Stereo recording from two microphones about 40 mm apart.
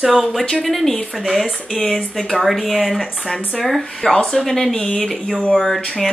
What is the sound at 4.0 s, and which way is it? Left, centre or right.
Speech, centre.